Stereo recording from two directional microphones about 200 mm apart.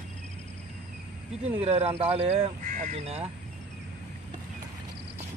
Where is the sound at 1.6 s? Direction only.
30° right (ahead or behind).